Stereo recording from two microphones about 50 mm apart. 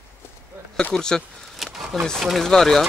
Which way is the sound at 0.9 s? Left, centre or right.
Centre.